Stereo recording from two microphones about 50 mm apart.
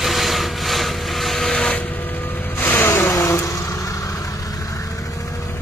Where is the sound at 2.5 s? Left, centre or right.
Left.